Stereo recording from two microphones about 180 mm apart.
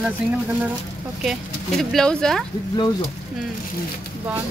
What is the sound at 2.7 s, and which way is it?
Speech, 25° left (ahead or behind).